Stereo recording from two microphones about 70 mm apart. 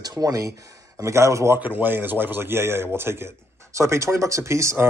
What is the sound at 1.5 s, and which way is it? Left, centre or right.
Speech, right.